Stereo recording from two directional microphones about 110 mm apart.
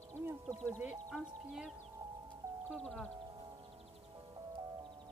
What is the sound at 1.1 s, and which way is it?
Speech, 5° left (ahead or behind).